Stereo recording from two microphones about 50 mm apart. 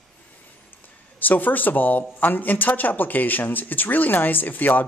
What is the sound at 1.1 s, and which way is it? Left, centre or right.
Speech, left.